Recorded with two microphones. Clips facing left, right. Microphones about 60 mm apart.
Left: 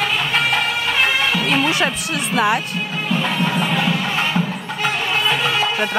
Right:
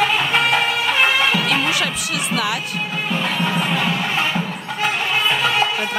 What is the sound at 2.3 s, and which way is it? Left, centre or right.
Speech, left.